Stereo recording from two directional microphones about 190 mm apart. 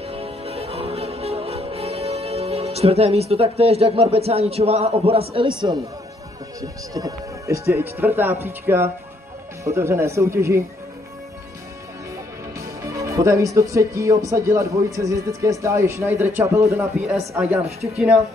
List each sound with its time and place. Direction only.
0.0 s music: 30° right (ahead or behind)
6.6 s speech: 20° right (ahead or behind)
12.5 s speech: 15° right (ahead or behind)